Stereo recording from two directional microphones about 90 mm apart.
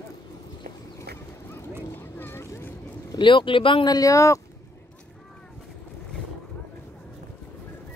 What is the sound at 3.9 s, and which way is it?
Speech, 40° left (ahead or behind).